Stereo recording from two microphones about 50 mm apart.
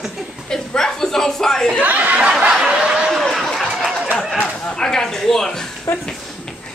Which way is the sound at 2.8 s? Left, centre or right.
Centre.